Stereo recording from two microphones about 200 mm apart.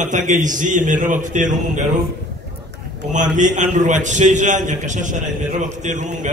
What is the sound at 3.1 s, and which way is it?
A man's voice, 40° right (ahead or behind).